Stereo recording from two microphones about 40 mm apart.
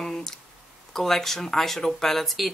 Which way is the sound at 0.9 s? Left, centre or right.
Centre.